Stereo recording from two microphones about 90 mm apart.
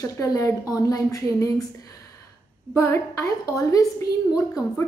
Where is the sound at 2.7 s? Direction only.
30° left (ahead or behind).